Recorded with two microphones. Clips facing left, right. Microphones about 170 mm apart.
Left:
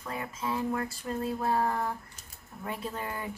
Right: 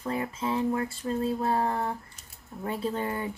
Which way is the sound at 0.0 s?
30° right (ahead or behind).